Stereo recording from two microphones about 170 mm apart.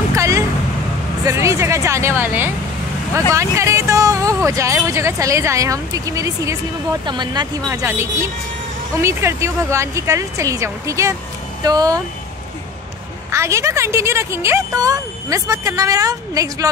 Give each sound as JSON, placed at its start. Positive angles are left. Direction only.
{"t": 0.1, "sound": "a sound", "side_deg": -20}
{"t": 1.2, "sound": "a woman's voice", "side_deg": -15}
{"t": 13.3, "sound": "a woman's voice", "side_deg": -15}